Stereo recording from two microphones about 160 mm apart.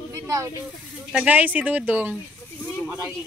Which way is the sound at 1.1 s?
10° right (ahead or behind).